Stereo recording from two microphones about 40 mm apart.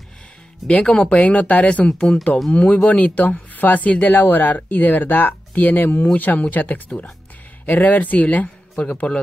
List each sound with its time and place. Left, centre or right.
0.7 s speech: left
2.5 s speech: left
4.1 s speech: left